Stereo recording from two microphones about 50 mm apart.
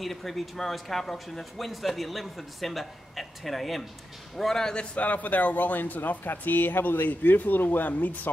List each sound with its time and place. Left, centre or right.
0.0 s speech: centre
4.9 s speech: left